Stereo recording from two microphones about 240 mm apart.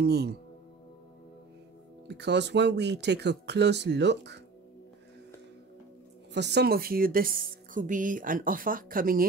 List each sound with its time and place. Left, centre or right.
0.0 s speech: right
2.0 s speech: right
6.3 s a woman's voice: right